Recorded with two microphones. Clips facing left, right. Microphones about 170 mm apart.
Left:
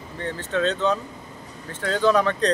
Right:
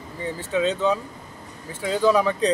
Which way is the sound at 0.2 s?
10° right (ahead or behind).